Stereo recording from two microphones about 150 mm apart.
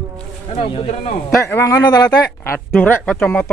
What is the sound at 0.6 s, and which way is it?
Speech, 40° left (ahead or behind).